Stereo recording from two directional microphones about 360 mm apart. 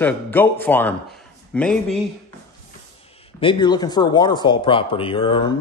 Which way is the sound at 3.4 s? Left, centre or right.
Centre.